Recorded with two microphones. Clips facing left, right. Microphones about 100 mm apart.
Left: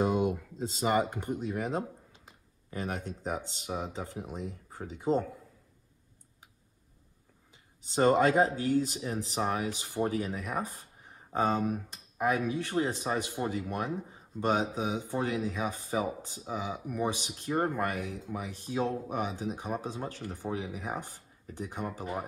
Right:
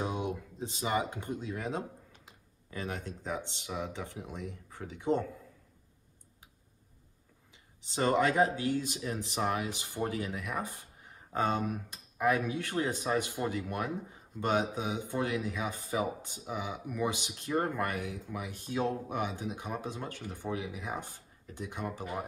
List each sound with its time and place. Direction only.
0.0 s a sound: 45° left (ahead or behind)
1.5 s speech: 40° left (ahead or behind)
7.9 s speech: 40° left (ahead or behind)